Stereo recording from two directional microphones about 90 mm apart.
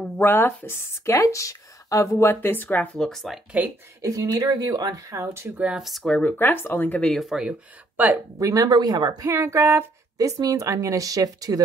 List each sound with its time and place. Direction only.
0.2 s speech: 25° left (ahead or behind)
1.1 s speech: 35° left (ahead or behind); by 3.0 s 20° left (ahead or behind)
3.0 s speech: 5° left (ahead or behind)
4.0 s speech: 45° right (ahead or behind)
5.6 s speech: 10° right (ahead or behind)
5.9 s speech: centre (ahead or behind)
6.1 s speech: 20° left (ahead or behind)
7.1 s speech: centre (ahead or behind)
8.4 s speech: 40° right (ahead or behind)
9.2 s speech: 35° right (ahead or behind)
10.1 s speech: 40° right (ahead or behind)